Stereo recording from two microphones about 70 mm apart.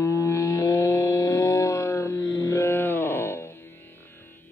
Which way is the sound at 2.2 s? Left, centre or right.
Left.